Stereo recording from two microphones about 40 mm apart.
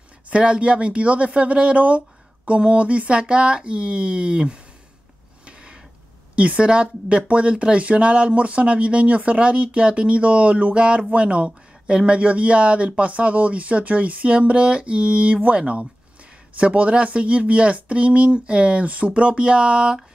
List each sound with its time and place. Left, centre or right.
0.3 s speech: right
6.3 s speech: right